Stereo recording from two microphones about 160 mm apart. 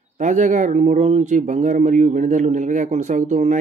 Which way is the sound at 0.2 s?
50° right (ahead or behind).